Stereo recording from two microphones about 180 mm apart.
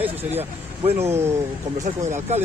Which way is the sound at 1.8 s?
40° right (ahead or behind).